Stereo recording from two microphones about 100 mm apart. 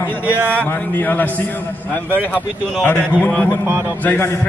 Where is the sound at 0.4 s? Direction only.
15° right (ahead or behind).